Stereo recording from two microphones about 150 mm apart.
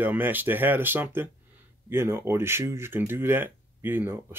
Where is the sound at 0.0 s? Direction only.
10° right (ahead or behind).